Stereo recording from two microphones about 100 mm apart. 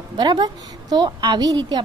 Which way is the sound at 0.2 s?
45° right (ahead or behind).